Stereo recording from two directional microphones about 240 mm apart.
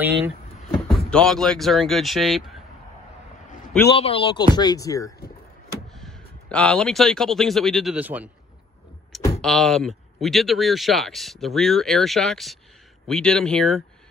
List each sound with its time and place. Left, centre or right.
0.6 s speech: centre
3.9 s speech: left
5.9 s speech: centre
9.4 s speech: centre